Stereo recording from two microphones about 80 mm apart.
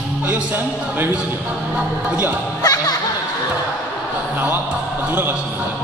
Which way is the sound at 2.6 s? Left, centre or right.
Left.